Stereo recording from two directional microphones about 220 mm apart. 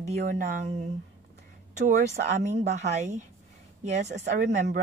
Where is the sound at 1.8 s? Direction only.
30° right (ahead or behind).